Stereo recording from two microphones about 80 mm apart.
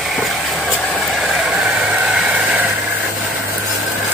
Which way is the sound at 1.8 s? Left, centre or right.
Centre.